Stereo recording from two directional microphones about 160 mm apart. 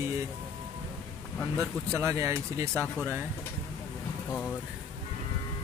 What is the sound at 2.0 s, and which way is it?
Speech, 20° right (ahead or behind).